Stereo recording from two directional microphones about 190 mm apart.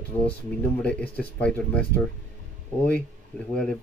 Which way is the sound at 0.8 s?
5° left (ahead or behind).